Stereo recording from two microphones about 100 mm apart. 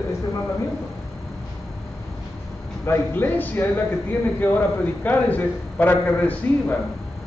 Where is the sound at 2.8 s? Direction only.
20° left (ahead or behind).